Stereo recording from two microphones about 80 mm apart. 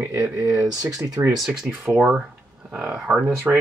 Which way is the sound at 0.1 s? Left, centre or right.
Right.